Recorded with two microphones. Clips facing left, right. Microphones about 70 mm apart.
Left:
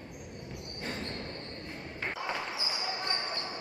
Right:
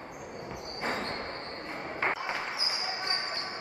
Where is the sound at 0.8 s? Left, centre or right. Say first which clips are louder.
Right 5 dB; right.